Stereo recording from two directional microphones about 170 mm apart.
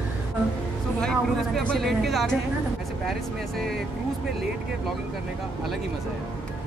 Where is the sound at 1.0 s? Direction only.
5° left (ahead or behind).